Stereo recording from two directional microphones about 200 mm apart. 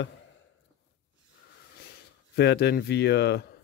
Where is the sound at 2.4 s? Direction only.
55° left (ahead or behind).